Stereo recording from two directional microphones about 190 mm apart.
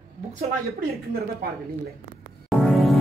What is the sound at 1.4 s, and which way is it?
Speech, 50° right (ahead or behind).